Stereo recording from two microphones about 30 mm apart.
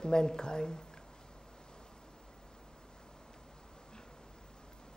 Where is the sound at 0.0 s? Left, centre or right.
Left.